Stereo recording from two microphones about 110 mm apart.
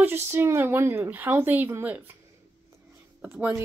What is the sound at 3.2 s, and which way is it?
Speech, 15° right (ahead or behind).